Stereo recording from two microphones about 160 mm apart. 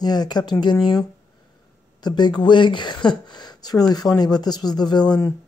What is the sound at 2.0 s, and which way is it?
Speech, 25° left (ahead or behind).